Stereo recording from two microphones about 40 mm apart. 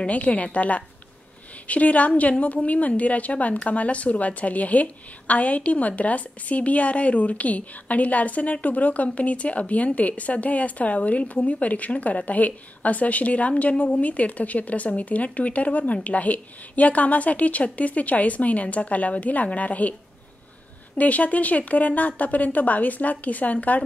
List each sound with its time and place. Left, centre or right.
0.0 s a woman's voice: left
21.0 s a woman's voice: left